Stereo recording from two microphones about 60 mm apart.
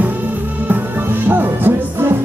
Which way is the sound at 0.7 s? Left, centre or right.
Right.